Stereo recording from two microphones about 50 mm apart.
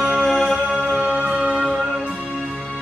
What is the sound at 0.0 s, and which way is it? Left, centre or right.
Music, centre.